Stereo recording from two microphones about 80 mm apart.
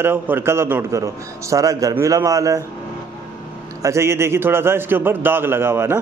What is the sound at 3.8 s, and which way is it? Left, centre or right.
Speech, right.